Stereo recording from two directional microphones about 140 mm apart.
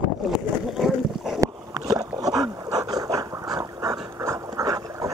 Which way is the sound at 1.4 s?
25° right (ahead or behind).